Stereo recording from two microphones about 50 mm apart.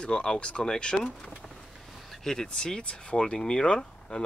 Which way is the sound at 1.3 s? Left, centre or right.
Centre.